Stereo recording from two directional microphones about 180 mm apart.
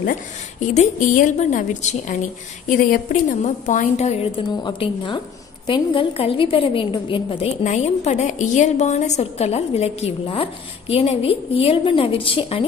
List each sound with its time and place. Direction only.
0.0 s a woman's voice: 45° left (ahead or behind)
4.6 s a woman's voice: 25° left (ahead or behind)
7.6 s a woman's voice: 40° left (ahead or behind)